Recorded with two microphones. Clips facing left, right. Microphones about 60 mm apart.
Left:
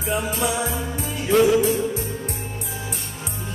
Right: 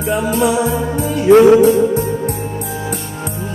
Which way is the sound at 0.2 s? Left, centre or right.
Right.